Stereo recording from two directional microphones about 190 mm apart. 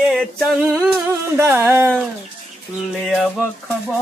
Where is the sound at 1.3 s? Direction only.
10° right (ahead or behind).